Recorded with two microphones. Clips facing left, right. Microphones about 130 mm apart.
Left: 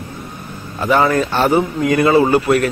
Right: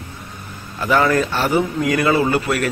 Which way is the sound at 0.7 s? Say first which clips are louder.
Left 2 dB; 25° left (ahead or behind).